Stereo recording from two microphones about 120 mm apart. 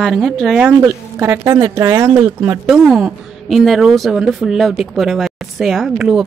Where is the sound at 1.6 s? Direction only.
30° right (ahead or behind).